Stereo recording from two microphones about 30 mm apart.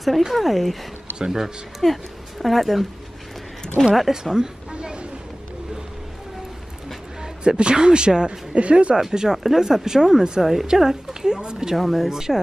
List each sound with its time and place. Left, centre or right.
0.3 s speech: centre
1.1 s speech: centre
1.8 s speech: centre
4.1 s a woman's voice: centre
4.7 s vehicle: right
7.4 s a woman's voice: right
8.5 s speech: right
9.1 s a woman's voice: centre
11.7 s speech: centre
12.1 s speech: centre